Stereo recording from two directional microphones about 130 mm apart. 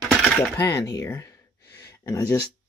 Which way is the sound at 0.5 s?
25° left (ahead or behind).